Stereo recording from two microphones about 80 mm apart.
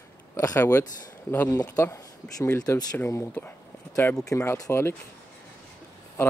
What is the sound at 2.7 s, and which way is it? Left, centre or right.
Speech, left.